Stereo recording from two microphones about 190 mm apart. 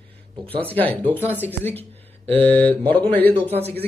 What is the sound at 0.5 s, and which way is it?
A man's voice, 10° left (ahead or behind).